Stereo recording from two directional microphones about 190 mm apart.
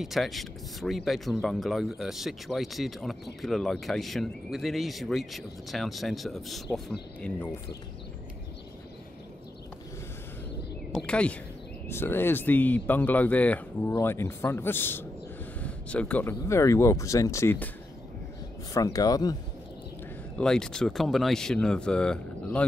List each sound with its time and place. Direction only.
0.0 s speech: centre (ahead or behind)
10.9 s a sound: 5° left (ahead or behind)
11.9 s speech: 10° left (ahead or behind)
18.7 s speech: 20° left (ahead or behind)
20.3 s speech: 5° left (ahead or behind)